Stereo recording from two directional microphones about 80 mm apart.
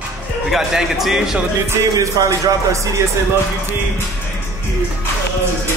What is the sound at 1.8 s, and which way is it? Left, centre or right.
Speech, right.